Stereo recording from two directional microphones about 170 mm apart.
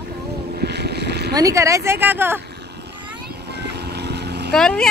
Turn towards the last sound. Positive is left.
turn(degrees=5)  # may be behind; listen again after turning